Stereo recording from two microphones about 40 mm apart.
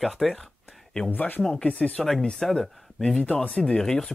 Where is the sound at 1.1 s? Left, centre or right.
Left.